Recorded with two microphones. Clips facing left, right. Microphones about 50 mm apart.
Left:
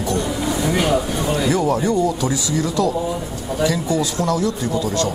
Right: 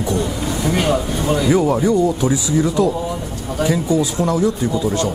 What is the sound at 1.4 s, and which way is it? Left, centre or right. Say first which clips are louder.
Speech: right 4 dB; centre.